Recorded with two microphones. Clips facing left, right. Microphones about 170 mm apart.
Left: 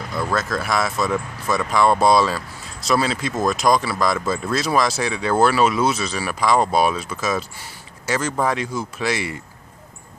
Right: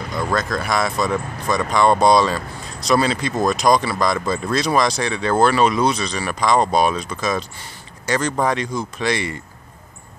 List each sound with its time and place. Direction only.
0.1 s speech: 5° left (ahead or behind)